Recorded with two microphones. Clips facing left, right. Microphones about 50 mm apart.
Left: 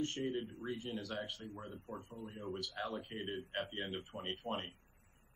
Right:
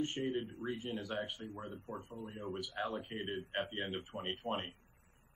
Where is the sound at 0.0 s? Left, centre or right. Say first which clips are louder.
Right 2 dB; centre.